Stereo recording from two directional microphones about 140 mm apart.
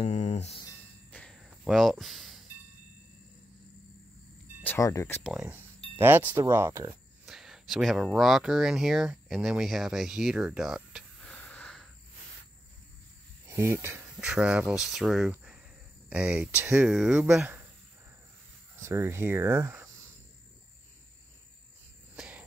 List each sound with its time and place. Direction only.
0.0 s music: 50° left (ahead or behind)
1.1 s a sound: 5° left (ahead or behind)
4.6 s speech: 25° left (ahead or behind)
5.3 s speech: 10° right (ahead or behind)
7.2 s speech: 5° right (ahead or behind)
11.2 s snort: 10° left (ahead or behind)
13.5 s speech: 20° right (ahead or behind)
14.2 s speech: 5° right (ahead or behind)
18.8 s speech: 20° right (ahead or behind)
22.1 s cricket: 5° right (ahead or behind)